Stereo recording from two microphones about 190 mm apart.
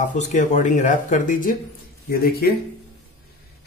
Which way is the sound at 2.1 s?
50° left (ahead or behind).